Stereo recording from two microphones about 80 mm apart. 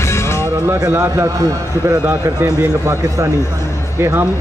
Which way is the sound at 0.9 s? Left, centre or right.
Right.